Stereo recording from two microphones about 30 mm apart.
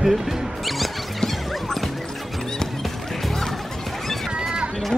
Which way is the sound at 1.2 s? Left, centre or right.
Centre.